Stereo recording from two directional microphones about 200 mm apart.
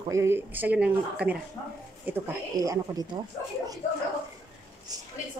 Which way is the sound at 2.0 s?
15° right (ahead or behind).